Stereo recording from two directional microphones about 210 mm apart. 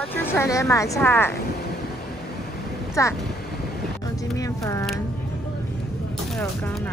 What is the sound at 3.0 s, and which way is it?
Speech, 15° left (ahead or behind).